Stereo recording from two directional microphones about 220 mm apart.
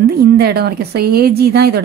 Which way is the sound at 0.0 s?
45° right (ahead or behind).